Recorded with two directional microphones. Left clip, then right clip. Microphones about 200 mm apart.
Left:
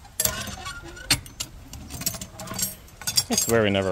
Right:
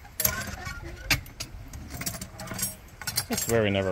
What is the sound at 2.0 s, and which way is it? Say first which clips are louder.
Keys jangling: left 4 dB; 20° left (ahead or behind).